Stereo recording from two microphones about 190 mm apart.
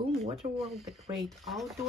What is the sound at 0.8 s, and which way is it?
Speech, centre (ahead or behind).